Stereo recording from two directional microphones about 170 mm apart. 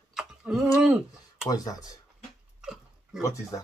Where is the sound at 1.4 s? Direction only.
20° left (ahead or behind).